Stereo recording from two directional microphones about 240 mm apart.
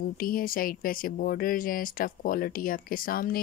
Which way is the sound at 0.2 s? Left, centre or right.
Left.